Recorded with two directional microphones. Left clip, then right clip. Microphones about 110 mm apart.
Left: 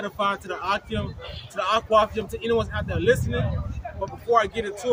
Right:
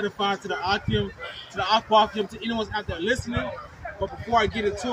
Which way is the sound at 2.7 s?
45° left (ahead or behind).